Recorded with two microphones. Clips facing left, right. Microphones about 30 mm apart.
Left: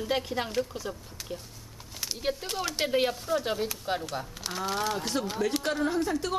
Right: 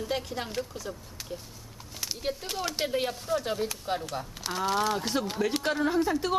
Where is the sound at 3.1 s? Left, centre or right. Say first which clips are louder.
Left 1 dB; centre.